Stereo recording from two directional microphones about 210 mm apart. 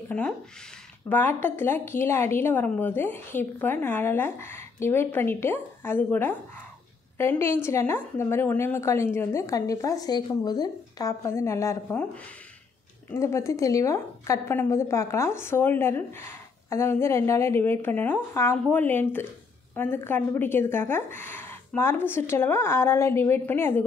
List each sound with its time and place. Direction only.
0.1 s a woman's voice: 5° left (ahead or behind)
13.1 s a woman's voice: 15° left (ahead or behind)